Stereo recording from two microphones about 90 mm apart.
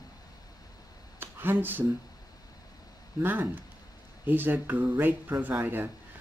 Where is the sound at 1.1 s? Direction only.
25° right (ahead or behind).